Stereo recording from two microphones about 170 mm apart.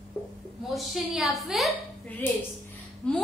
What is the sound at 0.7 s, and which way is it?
A woman's voice, centre (ahead or behind).